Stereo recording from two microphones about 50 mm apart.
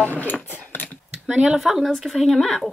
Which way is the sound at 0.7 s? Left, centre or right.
Left.